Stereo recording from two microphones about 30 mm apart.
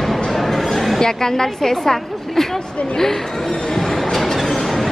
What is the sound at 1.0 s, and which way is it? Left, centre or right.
A woman's voice, centre.